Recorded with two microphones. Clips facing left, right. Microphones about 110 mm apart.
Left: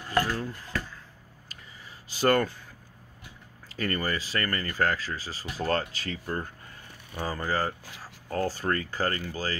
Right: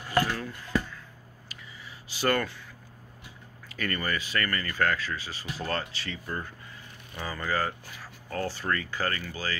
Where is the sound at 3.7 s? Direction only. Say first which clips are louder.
Left 2 dB; 30° left (ahead or behind).